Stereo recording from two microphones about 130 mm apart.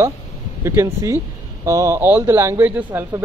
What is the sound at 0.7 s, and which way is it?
Speech, 20° right (ahead or behind).